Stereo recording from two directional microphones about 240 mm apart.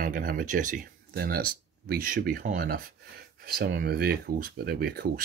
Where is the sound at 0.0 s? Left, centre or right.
Right.